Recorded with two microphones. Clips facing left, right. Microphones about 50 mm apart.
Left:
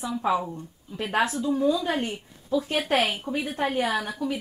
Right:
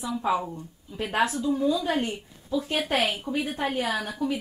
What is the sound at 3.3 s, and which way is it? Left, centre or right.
Speech, left.